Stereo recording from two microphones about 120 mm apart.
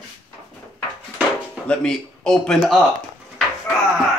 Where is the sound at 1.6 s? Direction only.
5° left (ahead or behind).